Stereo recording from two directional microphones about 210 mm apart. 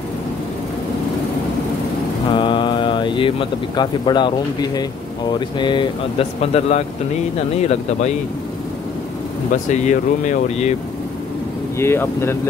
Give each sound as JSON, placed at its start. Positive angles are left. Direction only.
{"t": 2.3, "sound": "speech", "side_deg": 25}
{"t": 9.7, "sound": "speech", "side_deg": 35}
{"t": 11.8, "sound": "speech", "side_deg": 10}